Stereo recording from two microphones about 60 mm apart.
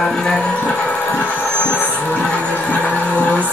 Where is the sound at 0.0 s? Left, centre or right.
Centre.